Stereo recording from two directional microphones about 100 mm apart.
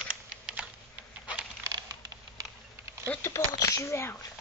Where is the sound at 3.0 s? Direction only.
25° left (ahead or behind).